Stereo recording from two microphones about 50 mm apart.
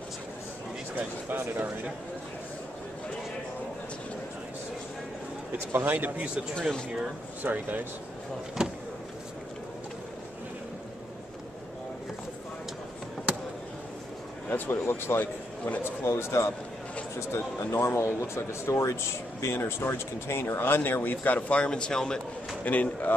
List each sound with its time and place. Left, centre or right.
1.3 s a man's voice: right
5.7 s a man's voice: right
6.0 s speech: right
7.4 s speech: right
8.6 s vehicle: centre
14.5 s speech: left
15.8 s speech: left
17.4 s speech: left
17.7 s speech: left
19.4 s speech: left
21.5 s speech: centre
22.7 s speech: left